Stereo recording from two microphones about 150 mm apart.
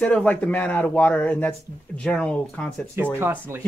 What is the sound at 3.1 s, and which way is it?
Speech, 15° right (ahead or behind).